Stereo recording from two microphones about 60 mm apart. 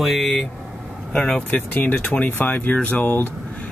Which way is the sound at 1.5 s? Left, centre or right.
Left.